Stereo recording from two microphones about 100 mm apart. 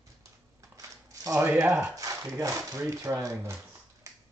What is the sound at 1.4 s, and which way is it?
Speech, 20° right (ahead or behind).